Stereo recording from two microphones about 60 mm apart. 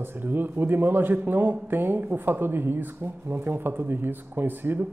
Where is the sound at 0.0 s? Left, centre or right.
Right.